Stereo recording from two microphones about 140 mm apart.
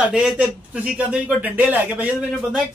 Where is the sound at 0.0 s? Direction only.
5° right (ahead or behind).